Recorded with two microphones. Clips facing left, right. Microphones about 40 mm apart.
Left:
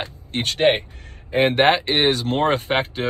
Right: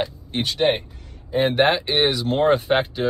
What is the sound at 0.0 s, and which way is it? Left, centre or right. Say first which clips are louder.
Speech: right 1 dB; left.